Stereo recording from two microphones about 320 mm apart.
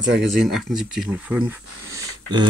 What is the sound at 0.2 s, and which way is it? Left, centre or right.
Speech, centre.